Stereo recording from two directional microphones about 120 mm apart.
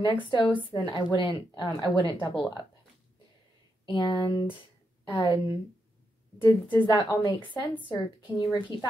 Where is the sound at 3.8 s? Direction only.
40° left (ahead or behind).